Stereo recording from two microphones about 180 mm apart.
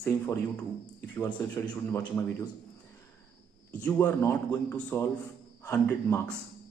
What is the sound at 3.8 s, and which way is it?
A man's voice, 10° left (ahead or behind).